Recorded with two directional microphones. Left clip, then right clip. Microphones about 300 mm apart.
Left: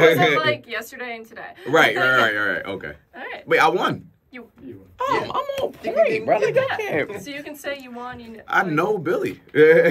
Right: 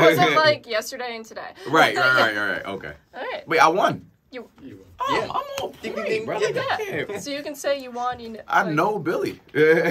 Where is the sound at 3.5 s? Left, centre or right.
Centre.